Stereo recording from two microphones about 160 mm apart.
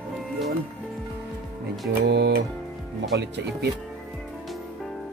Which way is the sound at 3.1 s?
90° right.